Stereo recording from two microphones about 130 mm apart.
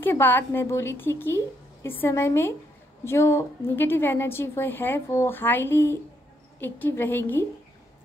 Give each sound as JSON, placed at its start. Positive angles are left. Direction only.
{"t": 0.0, "sound": "a woman's voice", "side_deg": 15}